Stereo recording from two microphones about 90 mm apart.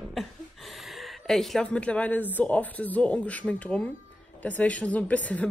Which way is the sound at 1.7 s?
15° left (ahead or behind).